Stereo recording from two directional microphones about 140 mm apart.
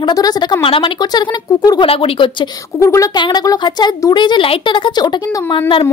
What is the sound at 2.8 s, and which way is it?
Speech, 20° left (ahead or behind).